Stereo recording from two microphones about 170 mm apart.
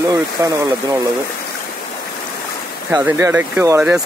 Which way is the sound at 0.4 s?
20° right (ahead or behind).